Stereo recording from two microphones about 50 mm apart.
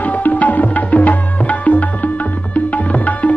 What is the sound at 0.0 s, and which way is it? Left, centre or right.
Tabla, left.